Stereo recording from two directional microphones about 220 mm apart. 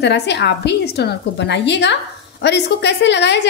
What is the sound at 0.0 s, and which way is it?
A woman's voice, 50° left (ahead or behind).